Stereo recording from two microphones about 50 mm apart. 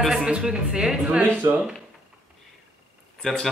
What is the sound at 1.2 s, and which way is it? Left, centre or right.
Speech, right.